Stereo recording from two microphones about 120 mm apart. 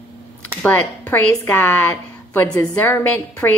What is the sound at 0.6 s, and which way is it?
A woman's voice, 15° left (ahead or behind).